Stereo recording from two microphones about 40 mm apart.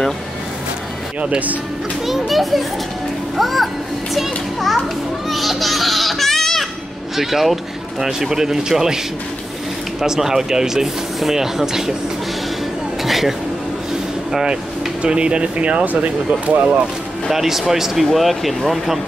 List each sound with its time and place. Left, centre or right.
2.0 s speech: centre
5.3 s baby cry: centre
7.2 s speech: centre
13.0 s a sound: centre
14.3 s speech: right
15.8 s speech: right
17.3 s speech: centre